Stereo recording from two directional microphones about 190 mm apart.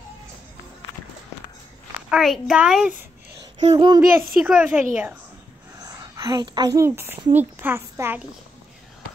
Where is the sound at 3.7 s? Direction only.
20° right (ahead or behind).